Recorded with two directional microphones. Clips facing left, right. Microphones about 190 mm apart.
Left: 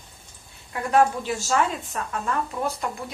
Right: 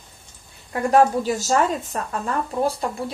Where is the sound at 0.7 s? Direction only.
40° right (ahead or behind).